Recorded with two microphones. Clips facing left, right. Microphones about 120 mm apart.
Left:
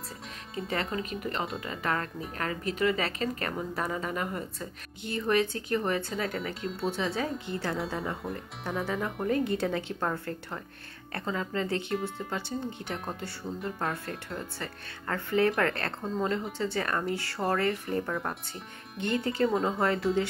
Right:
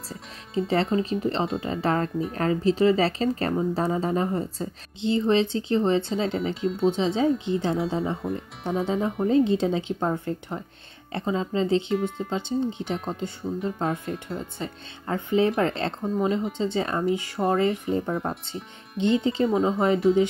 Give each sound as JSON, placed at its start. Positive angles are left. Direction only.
{"t": 0.6, "sound": "speech", "side_deg": -30}